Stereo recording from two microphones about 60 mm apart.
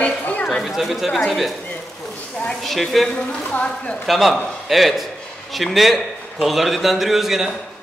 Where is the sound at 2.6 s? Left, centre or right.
Centre.